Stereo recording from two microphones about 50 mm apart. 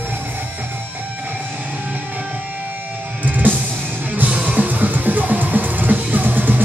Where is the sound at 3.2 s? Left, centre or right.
Right.